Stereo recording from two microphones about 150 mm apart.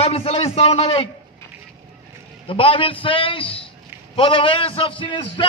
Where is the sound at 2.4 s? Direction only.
35° left (ahead or behind).